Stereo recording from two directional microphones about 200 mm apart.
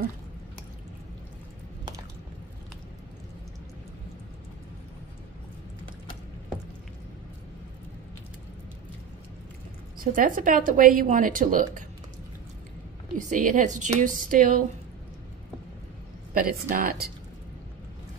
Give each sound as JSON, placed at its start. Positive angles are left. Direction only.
{"t": 9.9, "sound": "speech", "side_deg": -45}
{"t": 13.2, "sound": "a woman's voice", "side_deg": -40}
{"t": 16.3, "sound": "speech", "side_deg": -45}